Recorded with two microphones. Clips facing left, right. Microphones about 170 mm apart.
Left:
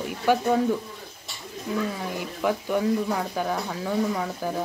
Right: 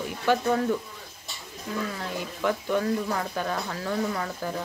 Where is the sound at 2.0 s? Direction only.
10° left (ahead or behind).